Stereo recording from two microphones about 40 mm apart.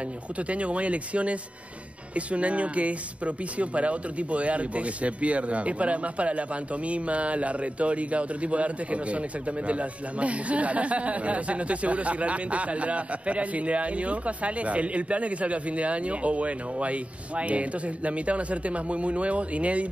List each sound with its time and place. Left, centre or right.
0.4 s speech: right